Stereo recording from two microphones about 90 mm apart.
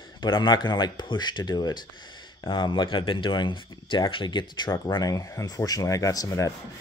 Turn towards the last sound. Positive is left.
turn(degrees=40)  # may be behind; listen again after turning